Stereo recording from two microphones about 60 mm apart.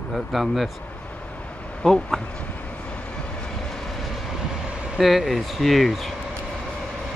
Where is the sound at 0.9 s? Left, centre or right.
Left.